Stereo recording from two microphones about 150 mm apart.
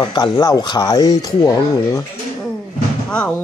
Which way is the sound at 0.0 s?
30° left (ahead or behind).